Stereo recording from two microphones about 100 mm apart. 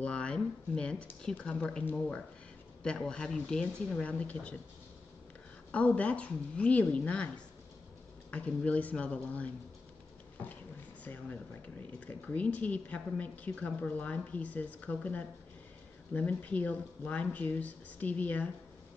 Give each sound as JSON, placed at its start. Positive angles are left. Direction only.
{"t": 0.0, "sound": "a woman's voice", "side_deg": 10}
{"t": 5.7, "sound": "a woman's voice", "side_deg": 15}
{"t": 11.1, "sound": "a woman's voice", "side_deg": 20}